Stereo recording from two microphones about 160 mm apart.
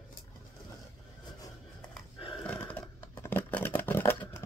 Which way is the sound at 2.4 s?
10° left (ahead or behind).